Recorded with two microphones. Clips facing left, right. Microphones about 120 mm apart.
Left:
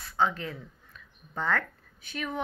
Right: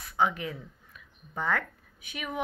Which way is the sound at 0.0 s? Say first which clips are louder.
Even; 15° right (ahead or behind).